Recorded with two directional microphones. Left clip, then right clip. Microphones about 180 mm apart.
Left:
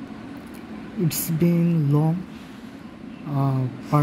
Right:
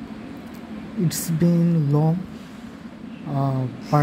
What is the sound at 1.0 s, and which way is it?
Speech, centre (ahead or behind).